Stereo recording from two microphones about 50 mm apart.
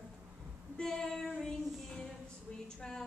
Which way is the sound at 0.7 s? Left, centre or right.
Centre.